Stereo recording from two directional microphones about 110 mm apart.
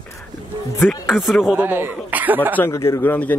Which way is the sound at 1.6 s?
15° right (ahead or behind).